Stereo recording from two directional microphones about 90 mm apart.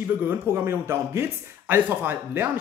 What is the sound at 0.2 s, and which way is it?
Speech, 25° right (ahead or behind).